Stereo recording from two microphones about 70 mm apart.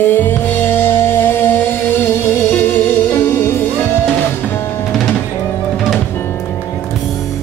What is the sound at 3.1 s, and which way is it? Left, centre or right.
Music, left.